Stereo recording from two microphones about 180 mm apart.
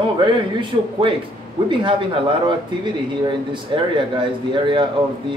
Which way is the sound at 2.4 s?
25° right (ahead or behind).